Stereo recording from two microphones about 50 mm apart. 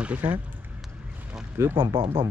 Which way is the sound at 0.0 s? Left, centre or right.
Right.